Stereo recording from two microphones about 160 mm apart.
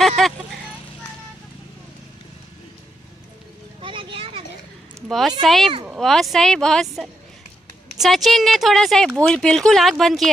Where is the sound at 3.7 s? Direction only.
30° right (ahead or behind).